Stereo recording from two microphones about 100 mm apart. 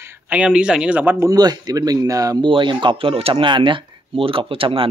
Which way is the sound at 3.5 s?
55° right (ahead or behind).